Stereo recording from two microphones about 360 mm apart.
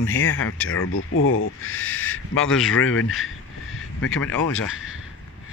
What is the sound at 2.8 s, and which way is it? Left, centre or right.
Speech, left.